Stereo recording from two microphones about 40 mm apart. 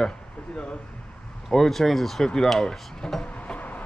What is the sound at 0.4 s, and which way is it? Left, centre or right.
Speech, left.